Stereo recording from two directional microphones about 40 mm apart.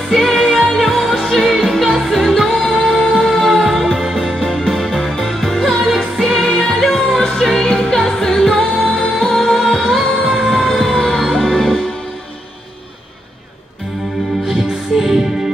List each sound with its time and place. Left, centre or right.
0.1 s music: centre
2.5 s music: centre
8.8 s music: left
9.2 s music: centre
10.4 s fire engine: centre
11.0 s music: centre
14.4 s music: centre